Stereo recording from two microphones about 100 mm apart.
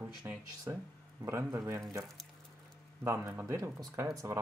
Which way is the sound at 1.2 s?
25° right (ahead or behind).